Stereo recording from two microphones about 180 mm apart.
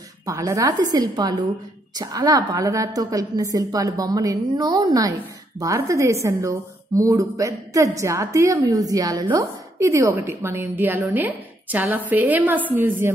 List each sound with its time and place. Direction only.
0.3 s a woman's voice: 20° right (ahead or behind)